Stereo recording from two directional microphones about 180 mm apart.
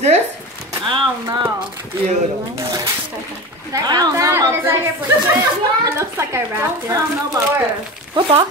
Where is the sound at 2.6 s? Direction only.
20° right (ahead or behind).